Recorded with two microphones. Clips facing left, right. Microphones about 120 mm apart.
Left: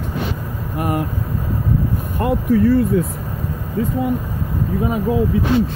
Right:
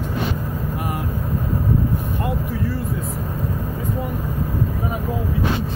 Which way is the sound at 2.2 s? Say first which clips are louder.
Left 14 dB; 70° left (ahead or behind).